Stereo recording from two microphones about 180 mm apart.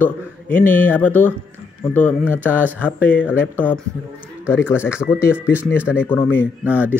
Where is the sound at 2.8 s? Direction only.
10° left (ahead or behind).